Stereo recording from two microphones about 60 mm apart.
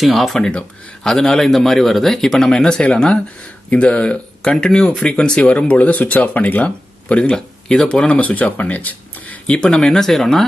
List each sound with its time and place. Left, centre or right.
0.0 s speech: centre
0.5 s speech: centre
1.1 s speech: centre; by 9.6 s left
9.6 s speech: centre